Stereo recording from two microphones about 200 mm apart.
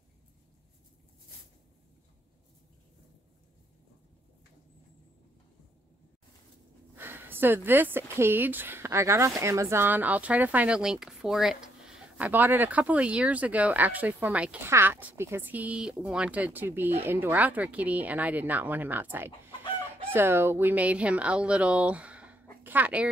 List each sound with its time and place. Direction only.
7.0 s speech: 10° right (ahead or behind)